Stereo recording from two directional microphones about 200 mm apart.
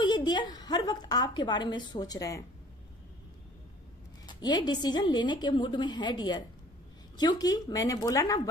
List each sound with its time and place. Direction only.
0.0 s a woman's voice: 20° left (ahead or behind)
4.3 s a woman's voice: 20° left (ahead or behind)